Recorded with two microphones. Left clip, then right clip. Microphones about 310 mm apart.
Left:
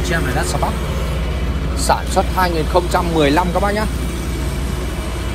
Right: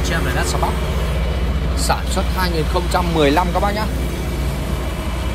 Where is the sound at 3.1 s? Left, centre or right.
Centre.